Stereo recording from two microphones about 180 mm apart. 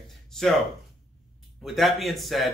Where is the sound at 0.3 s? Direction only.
Centre (ahead or behind).